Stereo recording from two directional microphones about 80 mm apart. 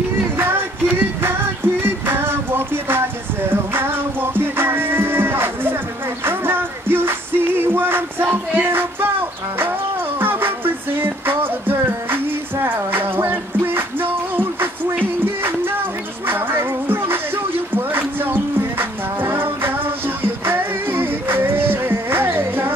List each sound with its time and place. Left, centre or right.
0.4 s music: right